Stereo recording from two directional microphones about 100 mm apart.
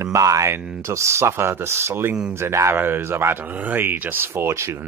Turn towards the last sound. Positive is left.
turn(degrees=-25)  # may be behind; listen again after turning